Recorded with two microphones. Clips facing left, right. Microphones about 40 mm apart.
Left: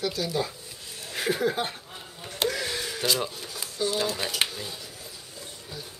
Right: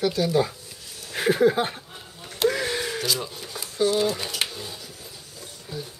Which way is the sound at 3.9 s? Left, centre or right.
Centre.